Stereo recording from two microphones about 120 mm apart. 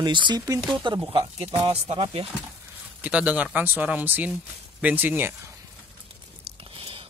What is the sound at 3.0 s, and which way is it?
Speech, 10° right (ahead or behind).